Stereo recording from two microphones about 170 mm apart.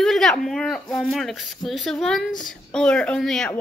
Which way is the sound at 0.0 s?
5° left (ahead or behind).